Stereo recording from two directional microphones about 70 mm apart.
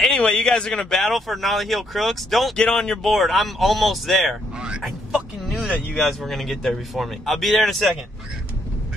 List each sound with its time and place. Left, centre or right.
0.0 s speech: centre
2.5 s speech: centre
4.6 s speech: centre
5.5 s speech: centre